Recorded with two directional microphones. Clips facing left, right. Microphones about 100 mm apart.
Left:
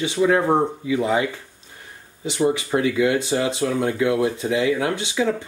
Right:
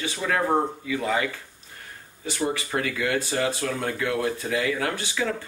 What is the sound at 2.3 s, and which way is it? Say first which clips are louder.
Speech: left 6 dB; 20° left (ahead or behind).